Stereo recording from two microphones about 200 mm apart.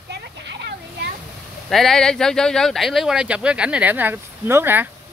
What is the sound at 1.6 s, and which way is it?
Speech, centre (ahead or behind).